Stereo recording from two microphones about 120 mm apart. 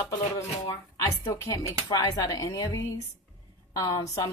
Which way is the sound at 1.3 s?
30° left (ahead or behind).